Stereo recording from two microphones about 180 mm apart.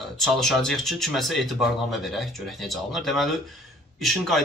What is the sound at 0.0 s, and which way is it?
Speech, centre (ahead or behind).